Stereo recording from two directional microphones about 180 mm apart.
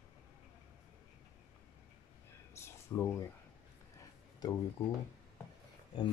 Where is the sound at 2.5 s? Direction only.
15° left (ahead or behind).